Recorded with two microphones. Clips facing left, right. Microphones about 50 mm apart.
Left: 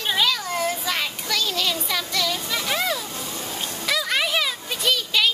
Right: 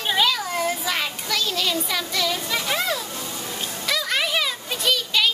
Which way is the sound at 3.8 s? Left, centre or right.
Centre.